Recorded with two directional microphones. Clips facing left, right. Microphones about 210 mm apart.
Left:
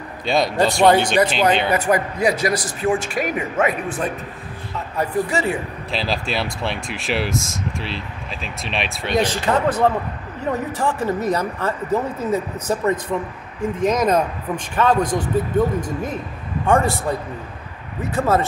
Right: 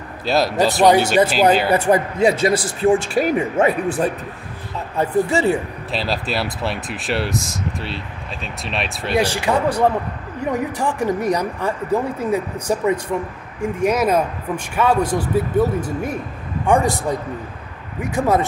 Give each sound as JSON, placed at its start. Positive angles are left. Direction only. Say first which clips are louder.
{"t": 0.2, "sound": "speech", "louder": "right 1 dB", "side_deg": -5}
{"t": 1.7, "sound": "speech", "louder": "right 3 dB", "side_deg": -30}
{"t": 5.9, "sound": "speech", "louder": "right 1 dB", "side_deg": 0}
{"t": 18.0, "sound": "speech", "louder": "right 1 dB", "side_deg": -15}